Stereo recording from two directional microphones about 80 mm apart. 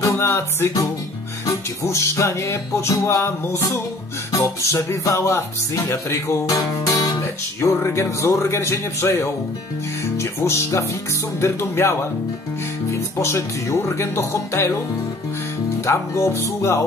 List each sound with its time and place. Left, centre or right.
0.0 s music: left
1.4 s speech: left
7.6 s speech: left
13.2 s speech: left
15.8 s speech: left